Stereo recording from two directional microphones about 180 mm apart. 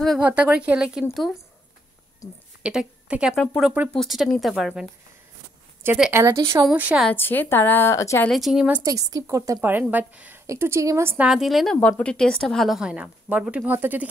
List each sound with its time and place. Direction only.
0.0 s speech: 5° right (ahead or behind)
2.2 s a woman's voice: 20° left (ahead or behind)
2.6 s speech: 5° right (ahead or behind)
5.9 s a woman's voice: 10° right (ahead or behind)
7.1 s a woman's voice: 10° left (ahead or behind)
8.3 s a woman's voice: centre (ahead or behind)
11.2 s speech: centre (ahead or behind)